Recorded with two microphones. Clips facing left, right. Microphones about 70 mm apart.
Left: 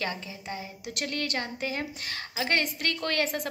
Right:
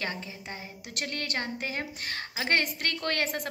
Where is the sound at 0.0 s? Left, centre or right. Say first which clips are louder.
Left 2 dB; right.